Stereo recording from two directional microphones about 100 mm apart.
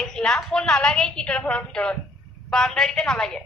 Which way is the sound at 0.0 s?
5° left (ahead or behind).